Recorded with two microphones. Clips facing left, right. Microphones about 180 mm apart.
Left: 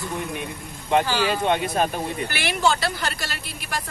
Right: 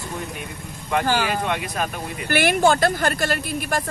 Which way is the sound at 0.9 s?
25° left (ahead or behind).